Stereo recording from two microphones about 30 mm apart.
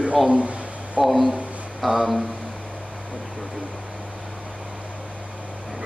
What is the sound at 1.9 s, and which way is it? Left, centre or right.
Speech, centre.